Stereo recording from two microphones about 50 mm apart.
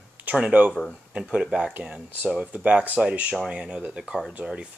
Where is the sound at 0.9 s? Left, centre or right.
Right.